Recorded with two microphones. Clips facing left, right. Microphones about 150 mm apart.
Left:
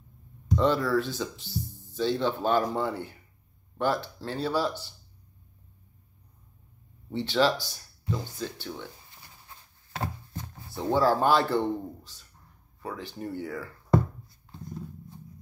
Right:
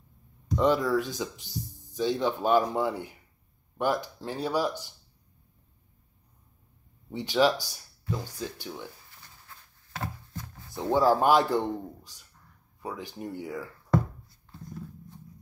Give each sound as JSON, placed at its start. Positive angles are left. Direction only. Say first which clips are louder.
{"t": 0.6, "sound": "a man's voice", "louder": "right 1 dB", "side_deg": -15}
{"t": 7.1, "sound": "a man's voice", "louder": "right 1 dB", "side_deg": -10}
{"t": 8.1, "sound": "speech", "louder": "left 1 dB", "side_deg": 20}
{"t": 8.4, "sound": "a man's voice", "louder": "left 1 dB", "side_deg": -10}
{"t": 9.1, "sound": "pig", "louder": "left 1 dB", "side_deg": 20}
{"t": 10.7, "sound": "a man's voice", "louder": "right 1 dB", "side_deg": -15}